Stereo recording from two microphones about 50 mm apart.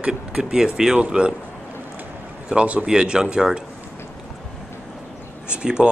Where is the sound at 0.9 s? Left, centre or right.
Right.